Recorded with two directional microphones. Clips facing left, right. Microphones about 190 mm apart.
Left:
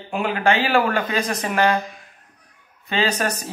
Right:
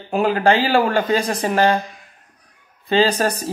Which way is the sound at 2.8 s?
30° right (ahead or behind).